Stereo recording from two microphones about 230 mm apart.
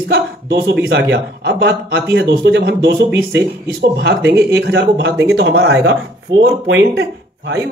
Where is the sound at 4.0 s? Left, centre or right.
Right.